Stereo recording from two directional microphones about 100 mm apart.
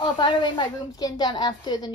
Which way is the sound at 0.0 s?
50° left (ahead or behind).